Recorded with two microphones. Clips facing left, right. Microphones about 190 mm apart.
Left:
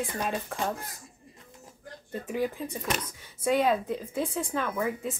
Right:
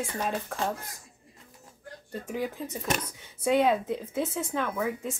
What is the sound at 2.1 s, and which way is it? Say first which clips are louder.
Speech: left 1 dB; 5° left (ahead or behind).